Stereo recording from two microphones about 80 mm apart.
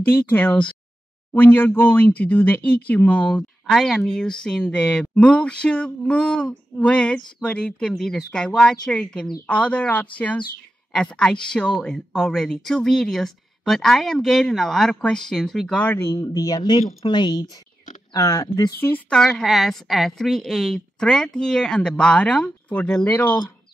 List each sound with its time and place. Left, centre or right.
0.0 s speech: left
3.6 s a woman's voice: centre
15.9 s speech: left
16.3 s speech: left
18.1 s speech: left
18.7 s speech: left
19.0 s a woman's voice: centre